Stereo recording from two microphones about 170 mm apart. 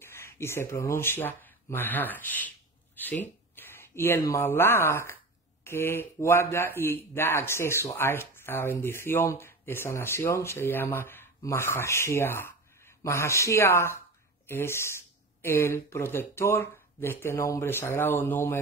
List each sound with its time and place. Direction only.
0.0 s speech: 15° left (ahead or behind)